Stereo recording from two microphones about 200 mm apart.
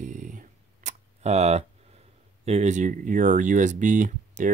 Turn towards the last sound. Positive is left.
turn(degrees=-40)  # may be behind; listen again after turning